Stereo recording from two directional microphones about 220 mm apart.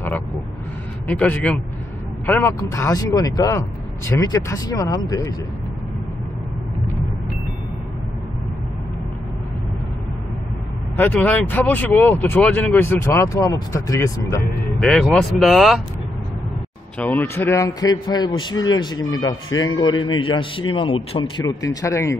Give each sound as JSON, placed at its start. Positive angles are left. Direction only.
{"t": 1.0, "sound": "speech", "side_deg": 5}
{"t": 11.0, "sound": "speech", "side_deg": 10}
{"t": 14.8, "sound": "speech", "side_deg": 5}
{"t": 17.0, "sound": "a man's voice", "side_deg": 5}